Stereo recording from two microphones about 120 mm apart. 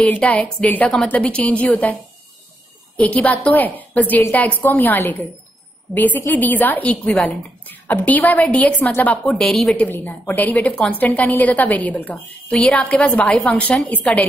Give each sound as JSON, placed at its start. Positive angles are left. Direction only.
{"t": 0.0, "sound": "a woman's voice", "side_deg": 10}
{"t": 3.0, "sound": "a woman's voice", "side_deg": 10}
{"t": 9.3, "sound": "a woman's voice", "side_deg": 0}
{"t": 9.8, "sound": "a woman's voice", "side_deg": 15}